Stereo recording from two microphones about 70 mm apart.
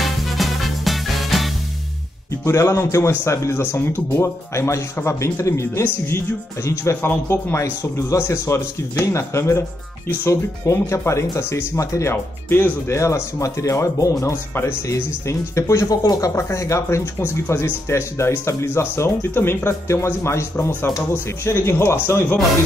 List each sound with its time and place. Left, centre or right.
0.0 s music: centre
2.4 s speech: left
12.4 s speech: left
12.9 s speech: left
14.2 s speech: left